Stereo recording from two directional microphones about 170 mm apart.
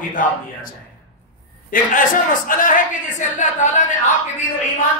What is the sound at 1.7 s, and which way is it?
A man's voice, 55° left (ahead or behind).